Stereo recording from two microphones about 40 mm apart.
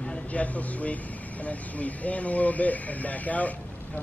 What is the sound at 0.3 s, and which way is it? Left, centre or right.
Speech, left.